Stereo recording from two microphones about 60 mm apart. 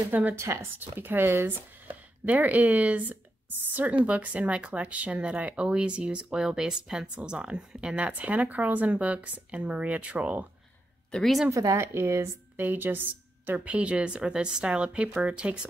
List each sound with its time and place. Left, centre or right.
0.1 s speech: right
0.4 s speech: right
0.7 s speech: right
11.5 s speech: right
12.5 s speech: right
13.5 s speech: right